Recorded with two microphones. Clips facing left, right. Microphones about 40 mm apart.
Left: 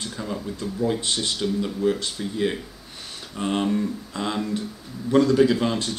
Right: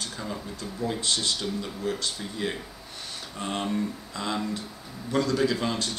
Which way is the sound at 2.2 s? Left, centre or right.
Centre.